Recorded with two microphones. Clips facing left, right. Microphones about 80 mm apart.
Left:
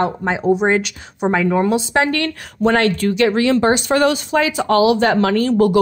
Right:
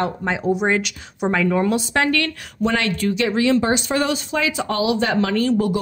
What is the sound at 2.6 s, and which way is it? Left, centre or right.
Speech, left.